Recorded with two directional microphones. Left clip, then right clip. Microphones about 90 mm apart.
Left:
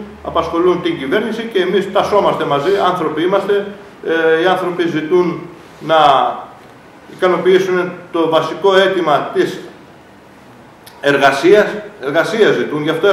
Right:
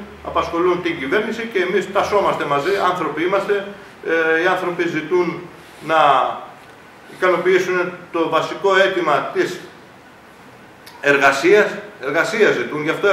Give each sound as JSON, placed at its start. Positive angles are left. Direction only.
{"t": 0.2, "sound": "a man's voice", "side_deg": -5}
{"t": 7.2, "sound": "a man's voice", "side_deg": -5}
{"t": 11.0, "sound": "a man's voice", "side_deg": 0}